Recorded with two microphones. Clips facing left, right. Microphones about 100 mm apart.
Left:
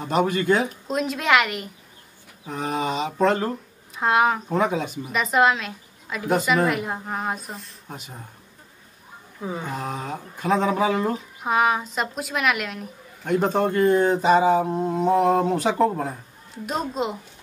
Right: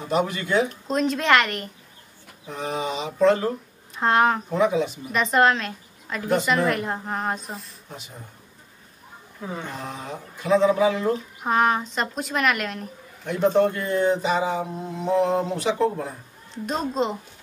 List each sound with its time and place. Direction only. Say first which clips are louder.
0.1 s speech: left 2 dB; 50° left (ahead or behind)
0.8 s a woman's voice: right 2 dB; 5° left (ahead or behind)
2.4 s speech: left 2 dB; 45° left (ahead or behind)
3.9 s speech: even; 5° left (ahead or behind)
4.6 s speech: right 2 dB; 50° left (ahead or behind)
5.1 s a woman's voice: even; 5° left (ahead or behind)
9.8 s speech: left 3 dB; 50° left (ahead or behind)
11.4 s a woman's voice: even; 5° left (ahead or behind)
13.2 s speech: right 1 dB; 50° left (ahead or behind)
16.6 s a woman's voice: right 1 dB; 5° left (ahead or behind)